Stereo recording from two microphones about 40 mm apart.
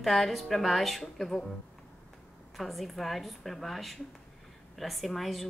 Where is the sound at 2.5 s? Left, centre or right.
Centre.